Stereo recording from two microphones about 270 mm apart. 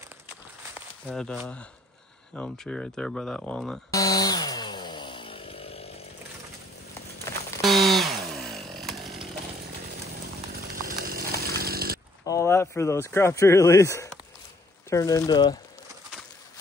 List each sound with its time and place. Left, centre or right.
1.0 s speech: centre
3.9 s chainsaw: centre
7.3 s a sound: centre
7.6 s a sound: centre
8.4 s chainsaw: centre
10.9 s chainsaw: right
12.3 s speech: centre